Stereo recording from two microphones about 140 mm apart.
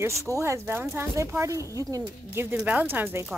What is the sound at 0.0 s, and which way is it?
Speech, 20° right (ahead or behind).